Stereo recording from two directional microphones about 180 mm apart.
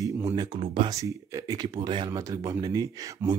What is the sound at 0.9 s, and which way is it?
Speech, 15° right (ahead or behind).